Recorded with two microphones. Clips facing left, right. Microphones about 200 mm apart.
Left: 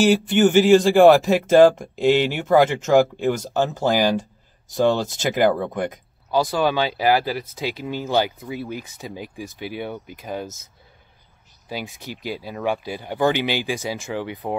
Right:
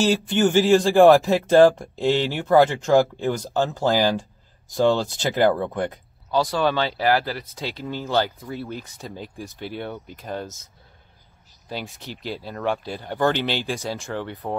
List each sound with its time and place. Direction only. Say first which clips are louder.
0.0 s speech: left 3 dB; 15° left (ahead or behind)
11.7 s speech: left 2 dB; 10° left (ahead or behind)